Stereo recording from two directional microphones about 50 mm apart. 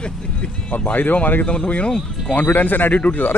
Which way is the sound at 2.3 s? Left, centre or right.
Left.